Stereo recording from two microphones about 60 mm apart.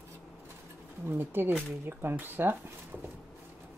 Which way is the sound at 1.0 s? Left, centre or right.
Right.